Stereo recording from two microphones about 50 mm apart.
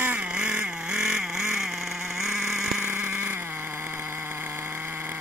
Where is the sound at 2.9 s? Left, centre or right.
Right.